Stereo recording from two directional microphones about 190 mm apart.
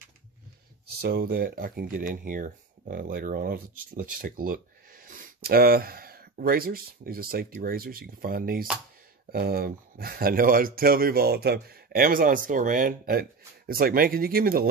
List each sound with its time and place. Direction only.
0.8 s speech: 55° right (ahead or behind)